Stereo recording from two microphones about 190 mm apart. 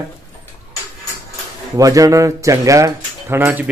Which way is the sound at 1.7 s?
15° right (ahead or behind).